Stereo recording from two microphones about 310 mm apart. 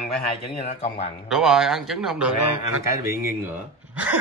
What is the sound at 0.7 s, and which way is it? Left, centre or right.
Speech, centre.